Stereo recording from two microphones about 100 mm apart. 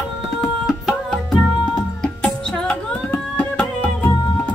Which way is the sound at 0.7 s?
Centre (ahead or behind).